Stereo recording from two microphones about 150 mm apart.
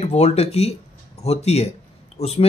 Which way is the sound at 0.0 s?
45° left (ahead or behind).